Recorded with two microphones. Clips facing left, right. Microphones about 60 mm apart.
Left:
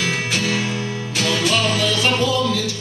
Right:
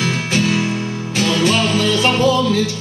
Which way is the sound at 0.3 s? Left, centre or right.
Right.